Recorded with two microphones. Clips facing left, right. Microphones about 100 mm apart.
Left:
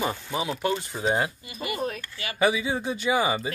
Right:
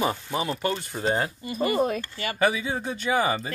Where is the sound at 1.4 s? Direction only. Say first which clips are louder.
Right 7 dB; 40° right (ahead or behind).